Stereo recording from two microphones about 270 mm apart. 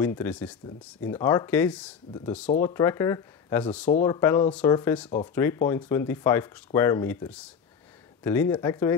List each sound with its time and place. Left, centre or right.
0.0 s speech: centre